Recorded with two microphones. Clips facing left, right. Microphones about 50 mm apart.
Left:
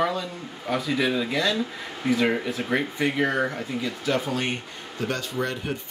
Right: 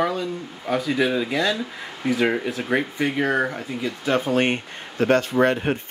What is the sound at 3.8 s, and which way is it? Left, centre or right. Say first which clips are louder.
Speech: right 5 dB; right.